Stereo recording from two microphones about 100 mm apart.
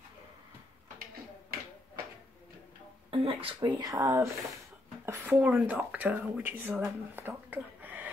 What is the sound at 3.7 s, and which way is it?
Speech, 35° right (ahead or behind).